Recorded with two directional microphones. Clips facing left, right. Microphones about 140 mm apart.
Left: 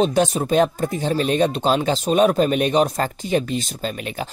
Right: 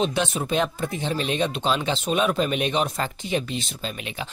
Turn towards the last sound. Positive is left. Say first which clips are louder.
# left 5 dB
turn(degrees=45)  # may be behind; listen again after turning